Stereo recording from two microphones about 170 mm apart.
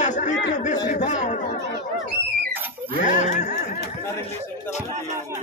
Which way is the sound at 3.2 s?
45° left (ahead or behind).